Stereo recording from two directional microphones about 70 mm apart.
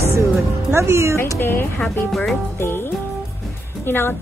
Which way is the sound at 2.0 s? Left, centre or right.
Centre.